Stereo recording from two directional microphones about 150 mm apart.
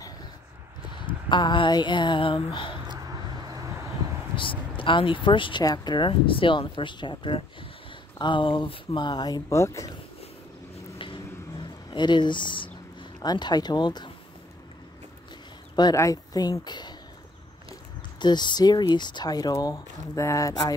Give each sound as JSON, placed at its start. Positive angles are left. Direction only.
{"t": 0.9, "sound": "a sound", "side_deg": 30}
{"t": 2.9, "sound": "vehicle", "side_deg": -25}
{"t": 4.4, "sound": "speech", "side_deg": 35}
{"t": 11.9, "sound": "speech", "side_deg": 30}
{"t": 15.7, "sound": "speech", "side_deg": 25}
{"t": 18.2, "sound": "speech", "side_deg": 30}